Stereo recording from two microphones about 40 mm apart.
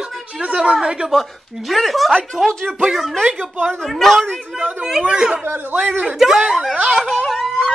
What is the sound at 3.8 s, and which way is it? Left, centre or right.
Speech, centre.